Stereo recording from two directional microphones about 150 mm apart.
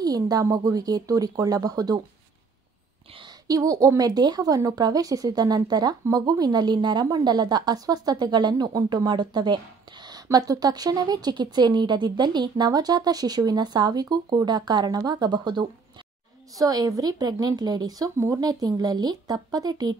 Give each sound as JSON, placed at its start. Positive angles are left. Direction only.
{"t": 0.0, "sound": "a woman's voice", "side_deg": -25}
{"t": 3.2, "sound": "a woman's voice", "side_deg": -25}